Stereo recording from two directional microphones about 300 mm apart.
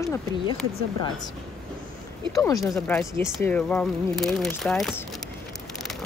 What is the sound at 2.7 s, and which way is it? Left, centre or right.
Speech, centre.